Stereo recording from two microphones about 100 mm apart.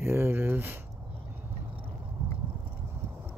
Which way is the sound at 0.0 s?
25° right (ahead or behind).